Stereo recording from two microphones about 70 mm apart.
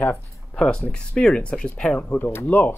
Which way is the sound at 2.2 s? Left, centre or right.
Left.